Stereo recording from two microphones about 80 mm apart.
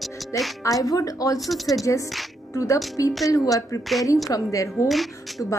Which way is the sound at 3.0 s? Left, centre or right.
Left.